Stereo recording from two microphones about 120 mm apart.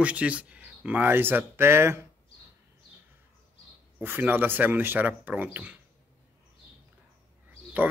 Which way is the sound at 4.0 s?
15° right (ahead or behind).